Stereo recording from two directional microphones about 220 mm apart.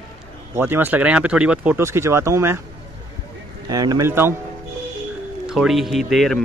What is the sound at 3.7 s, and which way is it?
Speech, 15° right (ahead or behind).